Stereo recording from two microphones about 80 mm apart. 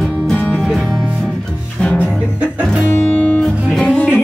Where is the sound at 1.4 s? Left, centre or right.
Centre.